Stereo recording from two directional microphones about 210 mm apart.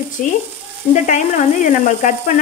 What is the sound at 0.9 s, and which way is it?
Speech, 35° left (ahead or behind).